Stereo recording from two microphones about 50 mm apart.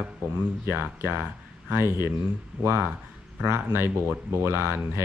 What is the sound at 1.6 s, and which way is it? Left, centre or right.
Speech, right.